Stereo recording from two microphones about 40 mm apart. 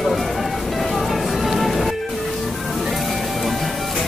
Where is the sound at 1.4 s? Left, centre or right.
Centre.